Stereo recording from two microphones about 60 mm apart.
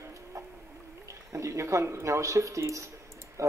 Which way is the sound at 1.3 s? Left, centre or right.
Right.